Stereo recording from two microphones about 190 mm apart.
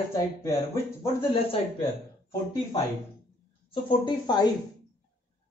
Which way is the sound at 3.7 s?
25° left (ahead or behind).